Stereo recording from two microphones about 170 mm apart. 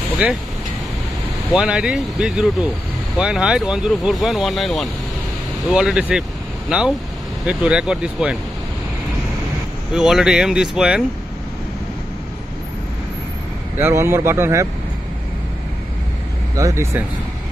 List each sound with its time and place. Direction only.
0.2 s speech: 5° right (ahead or behind)
1.5 s speech: 5° right (ahead or behind)
9.9 s speech: 5° right (ahead or behind)
13.7 s speech: 15° right (ahead or behind)
16.5 s speech: 15° right (ahead or behind)